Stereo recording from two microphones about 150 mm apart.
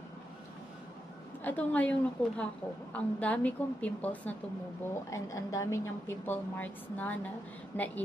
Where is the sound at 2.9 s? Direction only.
10° left (ahead or behind).